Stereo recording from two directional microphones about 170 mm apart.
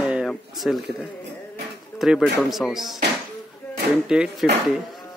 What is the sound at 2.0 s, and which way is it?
Speech, centre (ahead or behind).